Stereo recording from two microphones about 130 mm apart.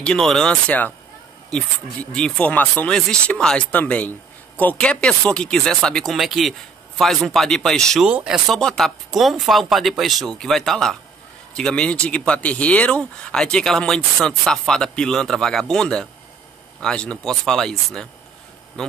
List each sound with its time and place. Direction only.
0.0 s speech: 5° left (ahead or behind)
2.1 s speech: 5° left (ahead or behind)